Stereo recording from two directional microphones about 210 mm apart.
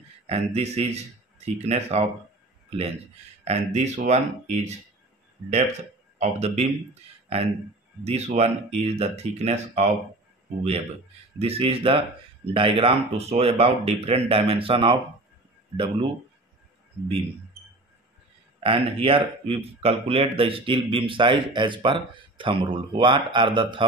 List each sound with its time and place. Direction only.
0.3 s speech: 30° right (ahead or behind)
3.4 s speech: 30° right (ahead or behind)
11.3 s speech: 30° right (ahead or behind)
18.6 s speech: 25° right (ahead or behind)